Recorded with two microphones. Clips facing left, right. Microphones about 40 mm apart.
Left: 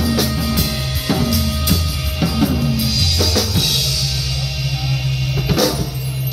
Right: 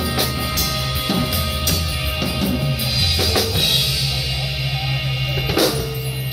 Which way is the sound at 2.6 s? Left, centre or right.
Right.